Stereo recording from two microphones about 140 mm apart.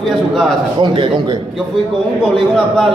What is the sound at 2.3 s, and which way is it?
Speech, centre (ahead or behind).